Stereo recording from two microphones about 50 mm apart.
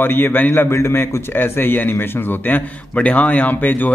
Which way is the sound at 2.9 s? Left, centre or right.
Left.